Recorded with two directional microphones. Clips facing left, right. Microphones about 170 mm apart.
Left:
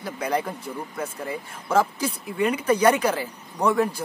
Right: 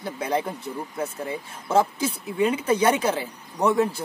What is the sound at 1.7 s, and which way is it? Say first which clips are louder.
Speech: right 1 dB; 25° right (ahead or behind).